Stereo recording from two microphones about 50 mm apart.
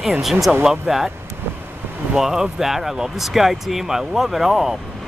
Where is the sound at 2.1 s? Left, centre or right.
Centre.